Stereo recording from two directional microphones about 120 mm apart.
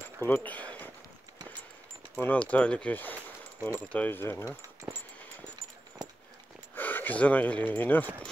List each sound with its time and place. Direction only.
0.2 s speech: 15° left (ahead or behind)
2.1 s speech: 15° left (ahead or behind)
4.5 s speech: 25° right (ahead or behind)
6.7 s speech: 15° left (ahead or behind)